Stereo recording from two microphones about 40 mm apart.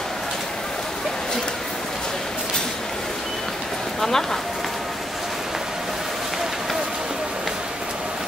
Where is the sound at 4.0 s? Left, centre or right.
Centre.